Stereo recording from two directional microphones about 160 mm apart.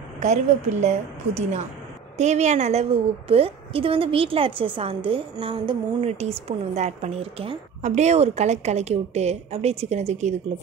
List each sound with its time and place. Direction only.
0.2 s a woman's voice: 45° right (ahead or behind)